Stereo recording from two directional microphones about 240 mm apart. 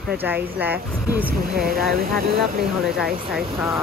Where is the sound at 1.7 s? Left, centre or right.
Right.